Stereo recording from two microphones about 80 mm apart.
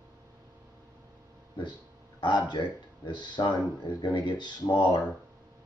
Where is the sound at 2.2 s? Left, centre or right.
Left.